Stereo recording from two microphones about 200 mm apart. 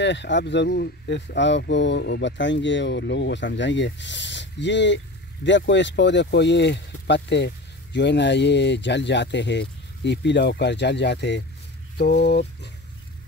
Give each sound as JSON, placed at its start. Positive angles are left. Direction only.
{"t": 0.0, "sound": "speech", "side_deg": 60}